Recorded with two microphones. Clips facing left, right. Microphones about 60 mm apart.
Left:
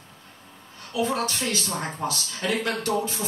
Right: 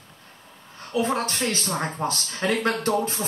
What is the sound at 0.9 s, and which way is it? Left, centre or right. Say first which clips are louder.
Speech: right 1 dB; right.